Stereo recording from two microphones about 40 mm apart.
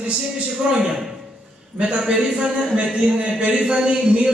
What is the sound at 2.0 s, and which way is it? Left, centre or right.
Speech, centre.